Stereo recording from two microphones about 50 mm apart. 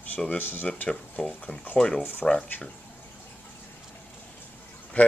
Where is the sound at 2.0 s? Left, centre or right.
Left.